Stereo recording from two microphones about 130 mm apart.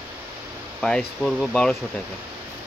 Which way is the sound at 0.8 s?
5° left (ahead or behind).